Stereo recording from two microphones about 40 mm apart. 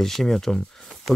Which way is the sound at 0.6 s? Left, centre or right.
Centre.